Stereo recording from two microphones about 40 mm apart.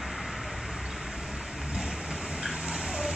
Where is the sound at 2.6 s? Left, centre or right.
Right.